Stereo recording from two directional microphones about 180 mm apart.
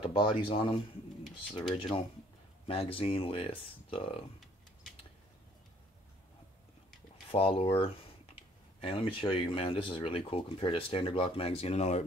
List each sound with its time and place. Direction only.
0.0 s speech: 30° left (ahead or behind)
7.2 s speech: 30° left (ahead or behind)